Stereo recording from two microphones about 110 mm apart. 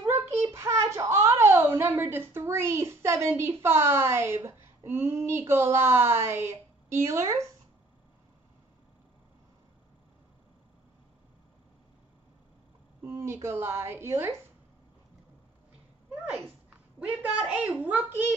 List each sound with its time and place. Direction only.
0.1 s a sound: 25° right (ahead or behind)
3.6 s a woman's voice: 20° right (ahead or behind)
13.2 s a woman's voice: 25° right (ahead or behind)
17.0 s a woman's voice: 10° right (ahead or behind)